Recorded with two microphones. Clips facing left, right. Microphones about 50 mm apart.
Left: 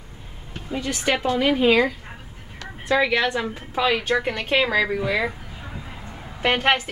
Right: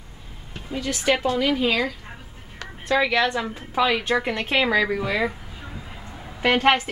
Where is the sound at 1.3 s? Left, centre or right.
Centre.